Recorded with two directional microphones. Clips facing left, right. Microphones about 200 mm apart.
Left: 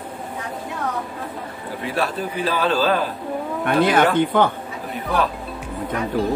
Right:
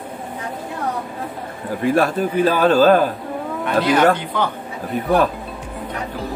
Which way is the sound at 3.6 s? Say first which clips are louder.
Right 2 dB; 50° left (ahead or behind).